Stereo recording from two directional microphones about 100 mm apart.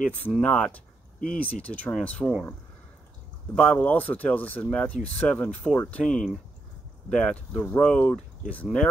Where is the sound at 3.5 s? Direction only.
15° left (ahead or behind).